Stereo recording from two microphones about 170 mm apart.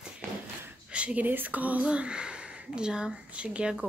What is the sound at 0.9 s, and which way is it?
Speech, 5° right (ahead or behind).